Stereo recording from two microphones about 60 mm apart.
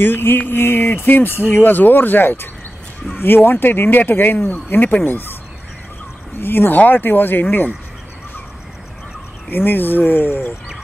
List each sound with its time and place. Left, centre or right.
0.0 s speech: left
6.4 s speech: left
9.5 s speech: left